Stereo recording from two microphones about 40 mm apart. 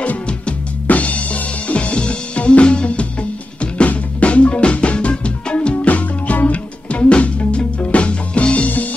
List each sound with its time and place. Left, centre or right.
0.8 s music: left
5.9 s music: left